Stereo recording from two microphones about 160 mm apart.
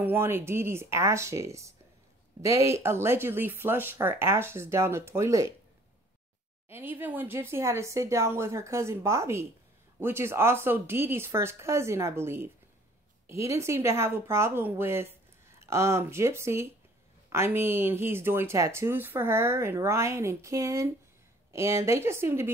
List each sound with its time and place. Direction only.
0.0 s speech: 15° right (ahead or behind)
6.7 s speech: 15° right (ahead or behind)